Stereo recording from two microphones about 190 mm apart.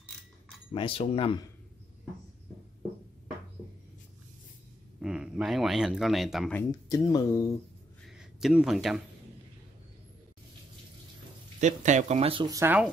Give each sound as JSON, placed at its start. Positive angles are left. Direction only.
{"t": 0.7, "sound": "speech", "side_deg": 30}
{"t": 5.0, "sound": "speech", "side_deg": -5}
{"t": 6.9, "sound": "speech", "side_deg": 20}
{"t": 8.2, "sound": "speech", "side_deg": 0}
{"t": 11.6, "sound": "speech", "side_deg": -40}
{"t": 12.4, "sound": "speech", "side_deg": -15}